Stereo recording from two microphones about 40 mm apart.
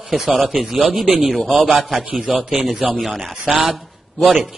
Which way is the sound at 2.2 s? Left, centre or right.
Centre.